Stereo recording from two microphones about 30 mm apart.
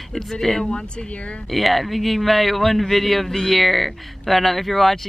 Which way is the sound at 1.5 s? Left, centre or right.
Centre.